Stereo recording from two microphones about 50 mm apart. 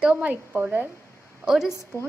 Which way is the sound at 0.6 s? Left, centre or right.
Right.